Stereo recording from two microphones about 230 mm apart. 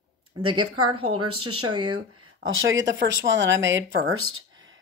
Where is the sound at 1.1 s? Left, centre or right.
Right.